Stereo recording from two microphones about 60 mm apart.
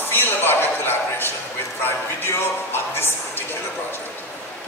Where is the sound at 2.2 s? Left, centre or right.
Left.